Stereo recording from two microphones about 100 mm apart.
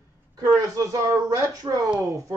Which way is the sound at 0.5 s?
35° right (ahead or behind).